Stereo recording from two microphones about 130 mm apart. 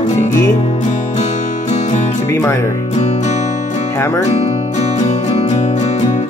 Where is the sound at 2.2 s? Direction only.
20° left (ahead or behind).